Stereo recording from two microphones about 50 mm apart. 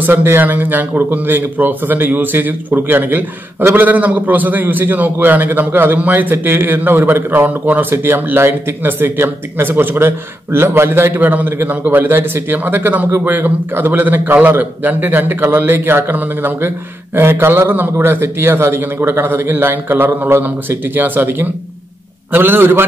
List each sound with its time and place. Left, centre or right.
0.0 s a man's voice: right
7.9 s a man's voice: right